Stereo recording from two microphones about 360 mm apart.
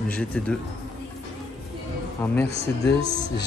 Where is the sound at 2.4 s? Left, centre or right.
Centre.